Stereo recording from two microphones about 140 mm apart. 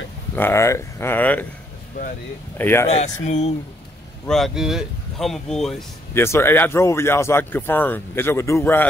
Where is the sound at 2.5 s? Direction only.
15° left (ahead or behind).